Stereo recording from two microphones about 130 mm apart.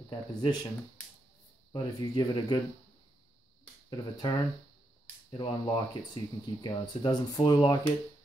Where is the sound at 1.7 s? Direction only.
35° left (ahead or behind).